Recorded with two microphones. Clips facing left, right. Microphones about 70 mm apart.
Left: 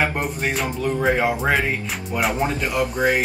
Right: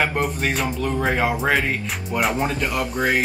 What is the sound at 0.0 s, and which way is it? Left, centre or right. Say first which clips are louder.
Music: right 1 dB; centre.